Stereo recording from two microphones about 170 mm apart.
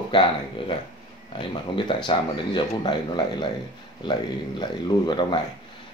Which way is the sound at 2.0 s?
30° left (ahead or behind).